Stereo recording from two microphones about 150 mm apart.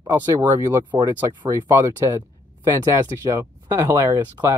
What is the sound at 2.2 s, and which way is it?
Speech, 25° right (ahead or behind).